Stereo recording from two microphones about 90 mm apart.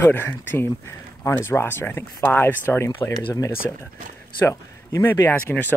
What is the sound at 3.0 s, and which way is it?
Speech, 45° left (ahead or behind).